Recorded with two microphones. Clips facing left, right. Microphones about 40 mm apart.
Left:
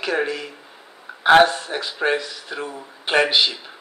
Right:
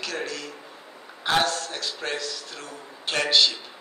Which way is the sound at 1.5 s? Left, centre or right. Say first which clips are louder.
Left 3 dB; centre.